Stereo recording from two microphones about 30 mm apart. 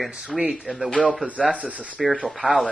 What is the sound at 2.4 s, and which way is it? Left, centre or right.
Speech, right.